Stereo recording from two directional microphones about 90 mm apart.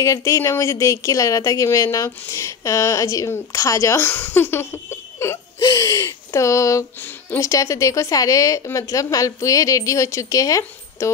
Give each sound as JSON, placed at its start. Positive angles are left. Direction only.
{"t": 0.0, "sound": "speech", "side_deg": 35}
{"t": 7.0, "sound": "speech", "side_deg": 20}
{"t": 7.3, "sound": "speech", "side_deg": 35}